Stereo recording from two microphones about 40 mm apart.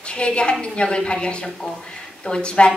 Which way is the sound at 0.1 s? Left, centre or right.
Left.